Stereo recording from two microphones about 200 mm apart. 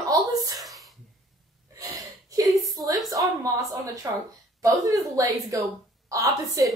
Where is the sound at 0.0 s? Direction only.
15° right (ahead or behind).